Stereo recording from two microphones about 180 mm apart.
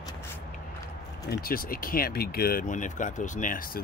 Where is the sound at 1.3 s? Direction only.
55° left (ahead or behind).